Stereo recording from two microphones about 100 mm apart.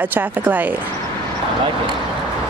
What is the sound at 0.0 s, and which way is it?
Speech, 20° right (ahead or behind).